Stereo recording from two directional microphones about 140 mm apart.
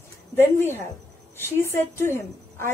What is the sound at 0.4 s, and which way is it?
A woman's voice, 15° left (ahead or behind).